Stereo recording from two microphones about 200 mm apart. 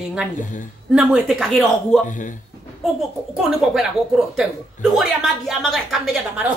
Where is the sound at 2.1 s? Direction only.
40° left (ahead or behind).